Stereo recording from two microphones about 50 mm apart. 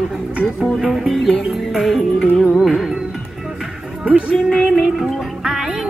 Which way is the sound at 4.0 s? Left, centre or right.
Right.